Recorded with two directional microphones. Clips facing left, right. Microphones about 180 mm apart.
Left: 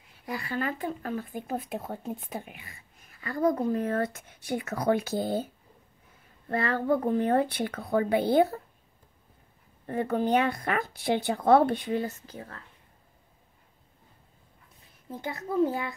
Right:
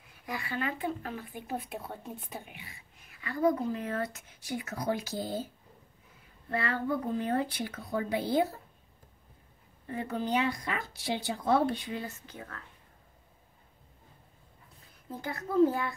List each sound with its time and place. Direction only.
0.3 s speech: 35° left (ahead or behind); by 5.5 s 60° left (ahead or behind)
6.5 s speech: 45° left (ahead or behind); by 8.5 s 60° left (ahead or behind)
9.8 s speech: 55° left (ahead or behind); by 12.5 s 35° left (ahead or behind)
15.0 s a child's voice: 20° left (ahead or behind)